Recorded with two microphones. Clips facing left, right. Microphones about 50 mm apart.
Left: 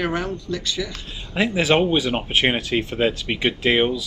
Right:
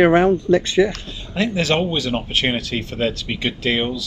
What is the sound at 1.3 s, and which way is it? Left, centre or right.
Speech, centre.